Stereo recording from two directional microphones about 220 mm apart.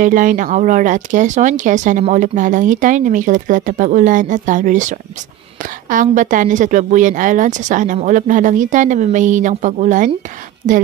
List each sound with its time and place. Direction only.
0.0 s speech: 35° right (ahead or behind)